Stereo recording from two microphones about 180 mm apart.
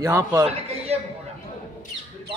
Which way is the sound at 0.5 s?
35° right (ahead or behind).